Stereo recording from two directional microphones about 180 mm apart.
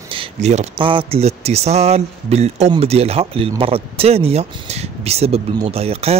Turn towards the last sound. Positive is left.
turn(degrees=-35)  # may be behind; listen again after turning